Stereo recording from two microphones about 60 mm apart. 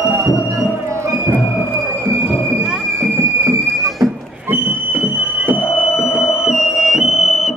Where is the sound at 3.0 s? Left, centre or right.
Right.